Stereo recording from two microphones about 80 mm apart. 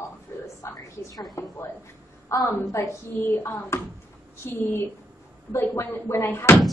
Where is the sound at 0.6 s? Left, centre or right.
Left.